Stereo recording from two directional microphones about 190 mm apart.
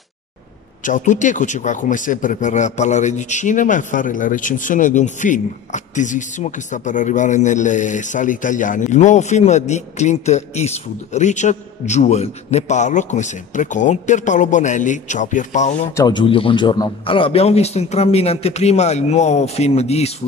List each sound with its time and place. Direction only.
0.8 s speech: 40° left (ahead or behind)
16.0 s speech: 25° left (ahead or behind)